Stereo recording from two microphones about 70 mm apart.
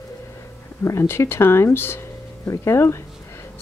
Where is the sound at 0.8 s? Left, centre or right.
Left.